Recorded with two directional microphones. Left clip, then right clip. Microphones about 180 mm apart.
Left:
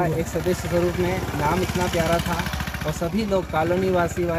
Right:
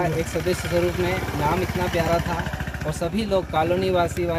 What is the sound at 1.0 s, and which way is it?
Speech, centre (ahead or behind).